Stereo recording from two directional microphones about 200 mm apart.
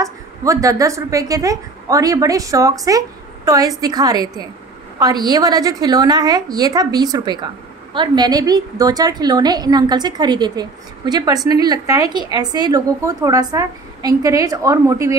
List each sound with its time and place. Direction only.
0.0 s a woman's voice: 15° right (ahead or behind)